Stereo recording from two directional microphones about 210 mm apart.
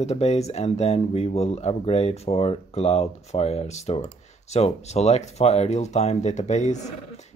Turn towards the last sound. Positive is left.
turn(degrees=35)  # may be behind; listen again after turning